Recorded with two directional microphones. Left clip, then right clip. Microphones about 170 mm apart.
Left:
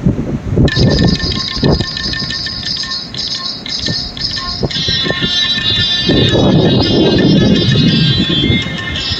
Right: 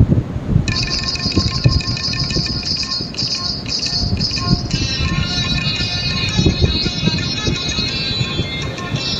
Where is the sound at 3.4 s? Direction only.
Centre (ahead or behind).